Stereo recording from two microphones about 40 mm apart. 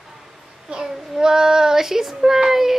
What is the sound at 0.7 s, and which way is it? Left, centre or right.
Speech, right.